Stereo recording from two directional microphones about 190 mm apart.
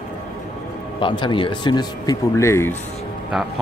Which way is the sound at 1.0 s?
25° left (ahead or behind).